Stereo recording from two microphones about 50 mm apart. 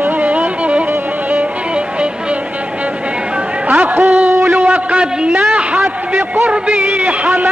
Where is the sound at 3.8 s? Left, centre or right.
Right.